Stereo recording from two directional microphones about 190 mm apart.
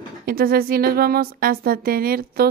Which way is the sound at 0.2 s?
50° right (ahead or behind).